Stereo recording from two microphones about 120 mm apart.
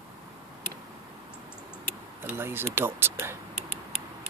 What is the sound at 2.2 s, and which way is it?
Speech, 20° right (ahead or behind).